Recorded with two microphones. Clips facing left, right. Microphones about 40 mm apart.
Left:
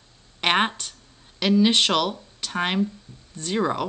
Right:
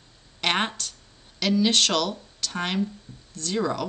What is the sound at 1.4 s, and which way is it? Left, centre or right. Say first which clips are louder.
A woman's voice: left 3 dB; centre.